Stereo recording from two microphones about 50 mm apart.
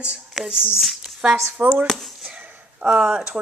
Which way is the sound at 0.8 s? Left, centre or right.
Centre.